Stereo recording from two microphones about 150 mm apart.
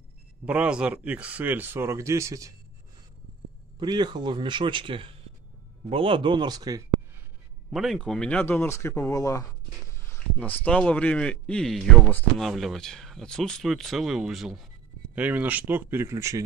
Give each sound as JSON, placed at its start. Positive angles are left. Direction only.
{"t": 0.5, "sound": "speech", "side_deg": -5}
{"t": 3.8, "sound": "speech", "side_deg": -30}
{"t": 7.7, "sound": "a man's voice", "side_deg": 0}